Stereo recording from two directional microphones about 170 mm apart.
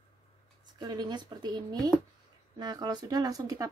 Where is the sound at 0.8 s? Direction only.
25° right (ahead or behind).